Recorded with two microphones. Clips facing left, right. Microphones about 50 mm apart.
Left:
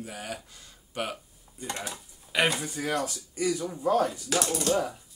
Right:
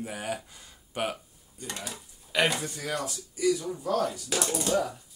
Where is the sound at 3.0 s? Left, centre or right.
Left.